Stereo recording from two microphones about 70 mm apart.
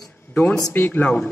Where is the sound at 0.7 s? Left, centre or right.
Left.